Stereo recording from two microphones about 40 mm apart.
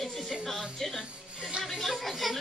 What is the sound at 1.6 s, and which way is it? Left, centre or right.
Speech, centre.